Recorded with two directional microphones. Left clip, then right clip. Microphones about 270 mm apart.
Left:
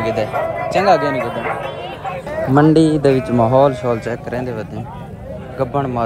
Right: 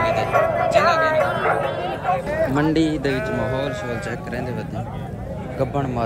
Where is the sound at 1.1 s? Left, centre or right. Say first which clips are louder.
Right 2 dB; right.